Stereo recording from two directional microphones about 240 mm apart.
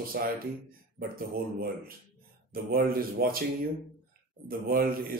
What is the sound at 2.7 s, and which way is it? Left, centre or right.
Speech, right.